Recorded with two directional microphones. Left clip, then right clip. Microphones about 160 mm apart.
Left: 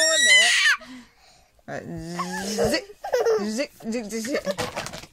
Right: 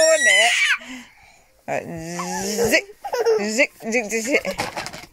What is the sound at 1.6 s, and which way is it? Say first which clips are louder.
Speech: right 8 dB; 25° right (ahead or behind).